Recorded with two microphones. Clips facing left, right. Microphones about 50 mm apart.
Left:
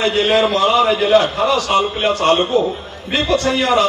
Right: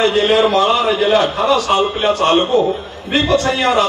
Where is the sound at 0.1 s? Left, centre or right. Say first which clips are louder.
Right 2 dB; right.